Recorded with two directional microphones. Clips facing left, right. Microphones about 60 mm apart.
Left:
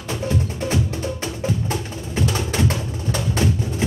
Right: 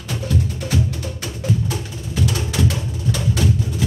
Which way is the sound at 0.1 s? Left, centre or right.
Left.